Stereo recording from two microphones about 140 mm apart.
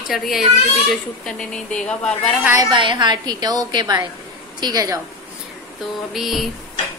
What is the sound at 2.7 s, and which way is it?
A woman's voice, 35° right (ahead or behind).